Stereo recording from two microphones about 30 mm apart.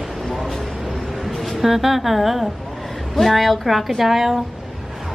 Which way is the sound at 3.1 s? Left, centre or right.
Centre.